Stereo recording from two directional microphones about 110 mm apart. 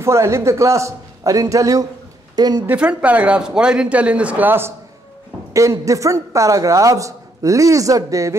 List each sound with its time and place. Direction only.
0.0 s speech: 25° right (ahead or behind)
2.6 s speech: 15° right (ahead or behind); by 8.4 s 30° right (ahead or behind)